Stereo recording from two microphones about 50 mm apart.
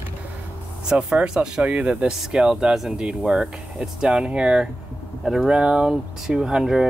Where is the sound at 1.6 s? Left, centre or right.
Right.